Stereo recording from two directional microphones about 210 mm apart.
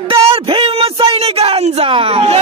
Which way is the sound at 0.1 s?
25° right (ahead or behind).